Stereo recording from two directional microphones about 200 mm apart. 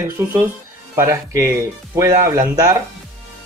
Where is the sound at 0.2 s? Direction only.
10° right (ahead or behind).